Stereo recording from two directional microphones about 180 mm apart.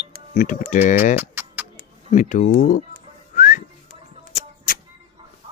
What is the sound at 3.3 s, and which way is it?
Whistling, 50° left (ahead or behind).